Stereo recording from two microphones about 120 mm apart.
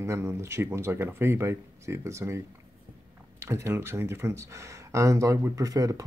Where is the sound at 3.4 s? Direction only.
20° right (ahead or behind).